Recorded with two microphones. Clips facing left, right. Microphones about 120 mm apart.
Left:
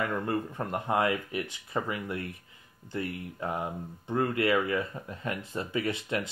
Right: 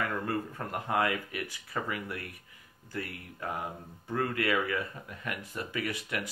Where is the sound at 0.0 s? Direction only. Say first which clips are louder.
Left 2 dB; 25° left (ahead or behind).